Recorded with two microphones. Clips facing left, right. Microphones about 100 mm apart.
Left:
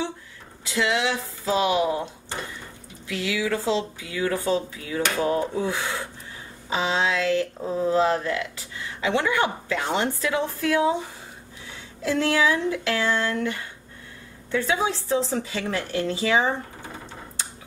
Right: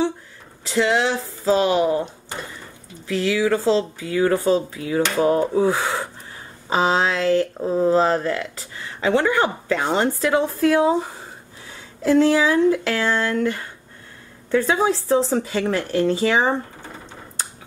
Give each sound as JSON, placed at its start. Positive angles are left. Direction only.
{"t": 0.7, "sound": "speech", "side_deg": -40}
{"t": 3.1, "sound": "speech", "side_deg": -40}
{"t": 5.1, "sound": "speech", "side_deg": -25}